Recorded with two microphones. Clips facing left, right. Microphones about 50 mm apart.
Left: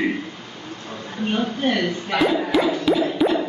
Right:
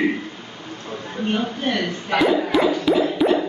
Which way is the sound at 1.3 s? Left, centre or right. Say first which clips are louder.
Left 3 dB; centre.